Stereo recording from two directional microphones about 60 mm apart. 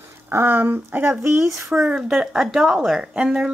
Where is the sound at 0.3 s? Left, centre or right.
Right.